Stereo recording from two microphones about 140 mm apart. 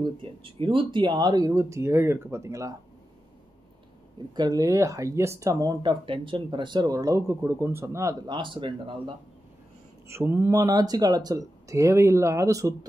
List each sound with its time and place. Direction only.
0.0 s speech: 40° right (ahead or behind); by 2.7 s 20° right (ahead or behind)
4.4 s speech: 25° right (ahead or behind)
8.3 s speech: 35° right (ahead or behind)
10.0 s speech: 15° right (ahead or behind)